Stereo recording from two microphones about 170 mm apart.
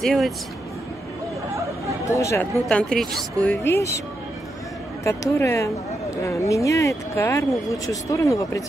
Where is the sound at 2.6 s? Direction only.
5° left (ahead or behind).